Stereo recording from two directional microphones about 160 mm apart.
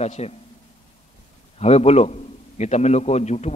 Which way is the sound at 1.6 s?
40° left (ahead or behind).